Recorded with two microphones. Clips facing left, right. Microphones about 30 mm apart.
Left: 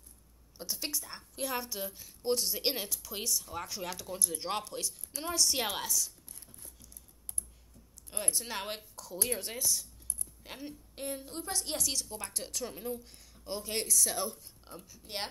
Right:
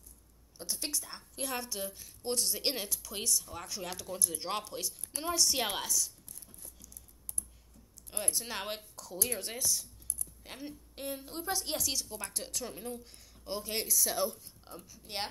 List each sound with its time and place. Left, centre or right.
0.6 s a woman's voice: centre
8.2 s a woman's voice: centre